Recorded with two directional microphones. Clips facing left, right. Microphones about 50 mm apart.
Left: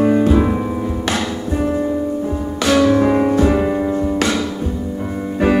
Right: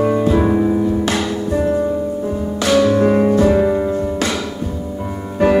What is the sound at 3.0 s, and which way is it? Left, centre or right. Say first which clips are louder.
Music: right 1 dB; centre.